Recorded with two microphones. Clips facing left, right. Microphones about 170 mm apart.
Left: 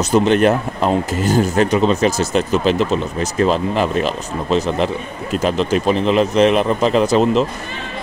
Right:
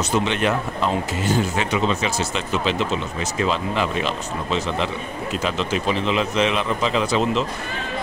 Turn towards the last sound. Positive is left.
turn(degrees=40)  # may be behind; listen again after turning